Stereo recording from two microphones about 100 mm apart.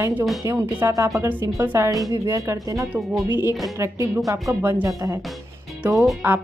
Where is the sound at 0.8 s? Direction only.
30° right (ahead or behind).